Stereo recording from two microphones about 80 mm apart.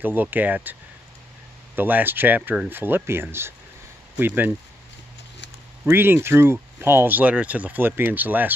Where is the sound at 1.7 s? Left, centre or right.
Right.